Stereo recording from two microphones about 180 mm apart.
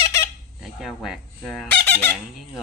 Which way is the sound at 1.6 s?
10° left (ahead or behind).